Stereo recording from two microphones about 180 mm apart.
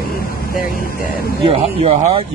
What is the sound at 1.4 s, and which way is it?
Speech, 35° right (ahead or behind).